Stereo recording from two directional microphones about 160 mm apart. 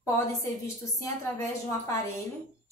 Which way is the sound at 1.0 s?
20° left (ahead or behind).